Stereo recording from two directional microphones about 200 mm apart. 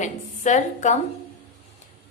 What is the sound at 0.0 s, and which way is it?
Speech, 40° left (ahead or behind).